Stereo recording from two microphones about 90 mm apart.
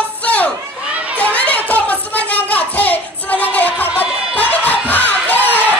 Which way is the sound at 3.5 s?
20° left (ahead or behind).